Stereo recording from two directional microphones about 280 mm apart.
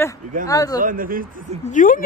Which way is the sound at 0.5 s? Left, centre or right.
Centre.